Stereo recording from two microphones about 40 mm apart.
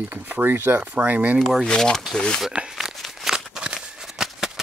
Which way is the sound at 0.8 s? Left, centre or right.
Right.